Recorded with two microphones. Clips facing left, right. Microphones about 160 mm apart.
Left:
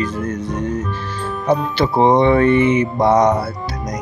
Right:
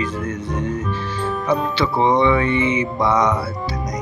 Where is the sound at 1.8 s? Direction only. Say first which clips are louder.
Left 4 dB; 45° left (ahead or behind).